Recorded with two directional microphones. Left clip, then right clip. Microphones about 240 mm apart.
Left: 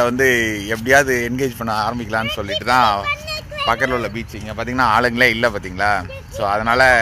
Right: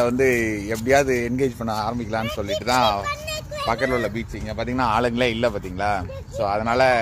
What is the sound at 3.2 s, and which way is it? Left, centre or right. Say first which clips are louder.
Vehicle: left 4 dB; right.